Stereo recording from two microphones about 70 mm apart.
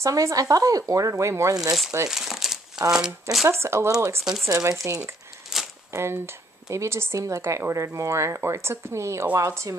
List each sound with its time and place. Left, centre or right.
0.0 s speech: right
2.0 s crumpling: centre
3.4 s speech: right
4.2 s speech: centre
4.5 s speech: right
4.8 s speech: right
5.5 s a sound: centre
5.9 s speech: right